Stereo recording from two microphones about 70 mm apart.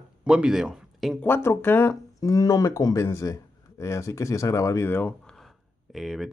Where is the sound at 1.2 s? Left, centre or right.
Left.